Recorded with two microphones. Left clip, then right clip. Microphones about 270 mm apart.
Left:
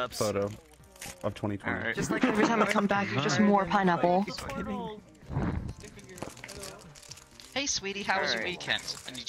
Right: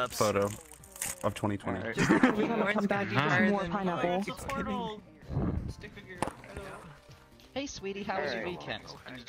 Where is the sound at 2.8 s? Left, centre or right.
Centre.